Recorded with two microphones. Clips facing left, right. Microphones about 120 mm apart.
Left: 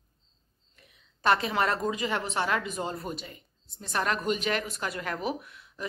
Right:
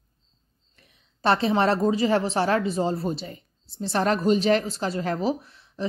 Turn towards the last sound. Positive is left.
turn(degrees=-30)  # may be behind; listen again after turning